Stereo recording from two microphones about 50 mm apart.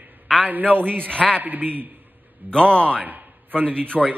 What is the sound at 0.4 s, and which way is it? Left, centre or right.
A man's voice, right.